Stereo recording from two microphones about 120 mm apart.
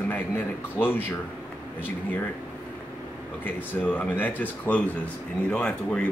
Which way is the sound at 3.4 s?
15° left (ahead or behind).